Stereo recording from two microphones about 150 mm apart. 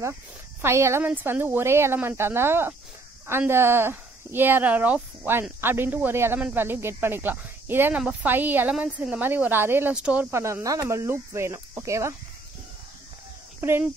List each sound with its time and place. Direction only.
0.6 s speech: 15° right (ahead or behind)
10.3 s speech: 20° right (ahead or behind)
13.6 s speech: 15° right (ahead or behind)